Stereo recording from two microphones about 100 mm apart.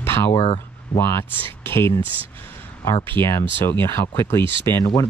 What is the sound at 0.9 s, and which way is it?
Speech, 25° left (ahead or behind).